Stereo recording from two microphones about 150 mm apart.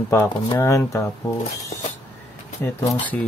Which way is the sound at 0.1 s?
15° left (ahead or behind).